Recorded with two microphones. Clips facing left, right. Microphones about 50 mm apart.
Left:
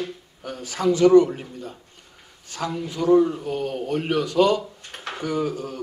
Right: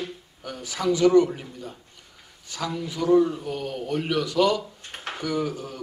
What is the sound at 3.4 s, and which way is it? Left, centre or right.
A man's voice, left.